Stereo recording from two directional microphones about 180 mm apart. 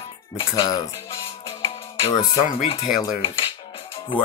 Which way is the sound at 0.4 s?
25° left (ahead or behind).